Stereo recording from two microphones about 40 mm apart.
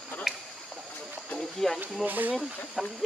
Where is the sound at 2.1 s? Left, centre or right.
Right.